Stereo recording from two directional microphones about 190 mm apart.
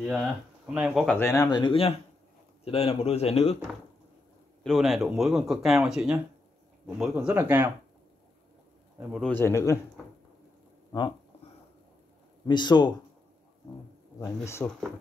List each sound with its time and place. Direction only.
0.0 s speech: centre (ahead or behind)
1.1 s a man's voice: 10° left (ahead or behind); by 3.5 s 30° left (ahead or behind)
4.6 s speech: centre (ahead or behind)
9.3 s speech: 15° left (ahead or behind)
10.9 s speech: 25° left (ahead or behind)
12.4 s speech: 25° left (ahead or behind)
14.2 s speech: 15° left (ahead or behind)